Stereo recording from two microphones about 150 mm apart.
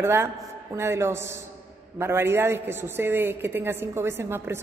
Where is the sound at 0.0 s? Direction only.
15° right (ahead or behind).